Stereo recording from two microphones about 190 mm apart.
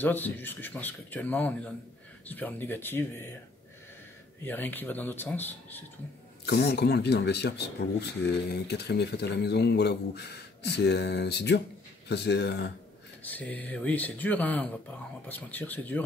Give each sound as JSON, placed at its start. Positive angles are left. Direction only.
{"t": 0.0, "sound": "speech", "side_deg": 10}
{"t": 4.5, "sound": "speech", "side_deg": 10}
{"t": 6.4, "sound": "speech", "side_deg": 60}
{"t": 13.2, "sound": "speech", "side_deg": 10}